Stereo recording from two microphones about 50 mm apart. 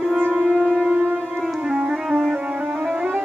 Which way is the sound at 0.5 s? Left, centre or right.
Right.